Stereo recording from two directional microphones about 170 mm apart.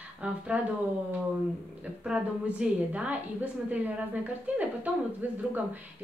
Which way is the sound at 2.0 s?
5° right (ahead or behind).